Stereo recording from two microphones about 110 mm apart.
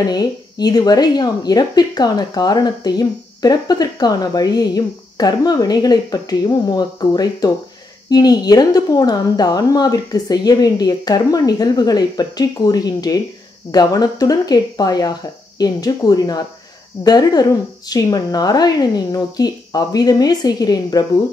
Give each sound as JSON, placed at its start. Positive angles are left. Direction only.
{"t": 0.1, "sound": "a woman's voice", "side_deg": 40}